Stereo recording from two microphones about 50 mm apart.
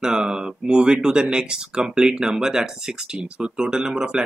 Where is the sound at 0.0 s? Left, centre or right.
Centre.